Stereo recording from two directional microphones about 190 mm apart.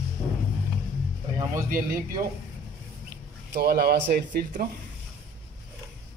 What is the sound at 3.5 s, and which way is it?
Speech, 55° right (ahead or behind).